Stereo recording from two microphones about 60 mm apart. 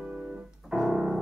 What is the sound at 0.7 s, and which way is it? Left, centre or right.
Music, centre.